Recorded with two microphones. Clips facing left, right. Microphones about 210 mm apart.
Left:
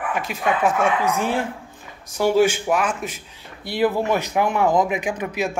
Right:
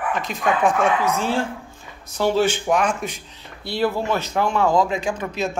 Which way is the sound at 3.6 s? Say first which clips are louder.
Left 2 dB; 15° left (ahead or behind).